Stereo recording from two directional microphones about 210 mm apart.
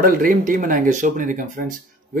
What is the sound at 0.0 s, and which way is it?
Speech, 40° right (ahead or behind).